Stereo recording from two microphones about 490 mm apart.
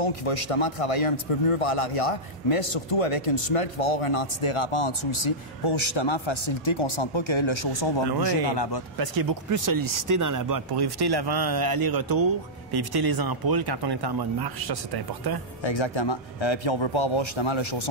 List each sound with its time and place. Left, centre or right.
0.0 s a man's voice: left
9.0 s speech: right
15.6 s a man's voice: left